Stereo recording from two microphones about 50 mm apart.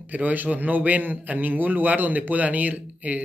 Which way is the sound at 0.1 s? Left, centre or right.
Right.